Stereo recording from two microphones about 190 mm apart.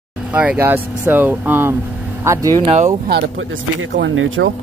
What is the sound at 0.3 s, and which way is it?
Speech, 10° right (ahead or behind).